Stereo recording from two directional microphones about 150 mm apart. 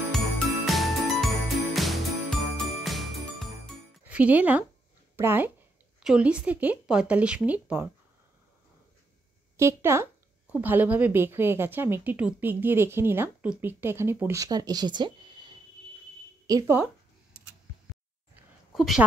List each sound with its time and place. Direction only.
0.7 s jingle bell: centre (ahead or behind)
4.0 s a woman's voice: 10° right (ahead or behind)
9.6 s a woman's voice: 20° right (ahead or behind)
18.7 s speech: centre (ahead or behind)